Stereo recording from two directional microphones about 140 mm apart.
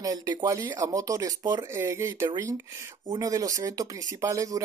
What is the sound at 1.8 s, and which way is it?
Speech, 15° right (ahead or behind).